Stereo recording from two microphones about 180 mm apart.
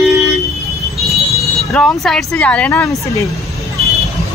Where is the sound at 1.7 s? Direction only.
Centre (ahead or behind); by 3.3 s 15° left (ahead or behind).